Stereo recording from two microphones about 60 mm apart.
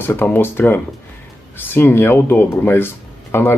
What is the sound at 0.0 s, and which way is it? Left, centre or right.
Speech, left.